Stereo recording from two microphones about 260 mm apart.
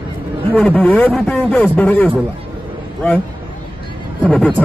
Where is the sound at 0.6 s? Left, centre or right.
Centre.